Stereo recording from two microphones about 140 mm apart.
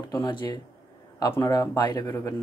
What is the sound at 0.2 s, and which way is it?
Speech, 30° left (ahead or behind).